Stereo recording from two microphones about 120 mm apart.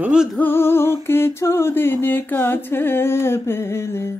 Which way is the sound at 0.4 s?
20° left (ahead or behind).